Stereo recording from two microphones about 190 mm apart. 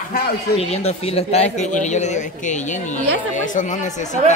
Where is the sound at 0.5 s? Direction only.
35° left (ahead or behind).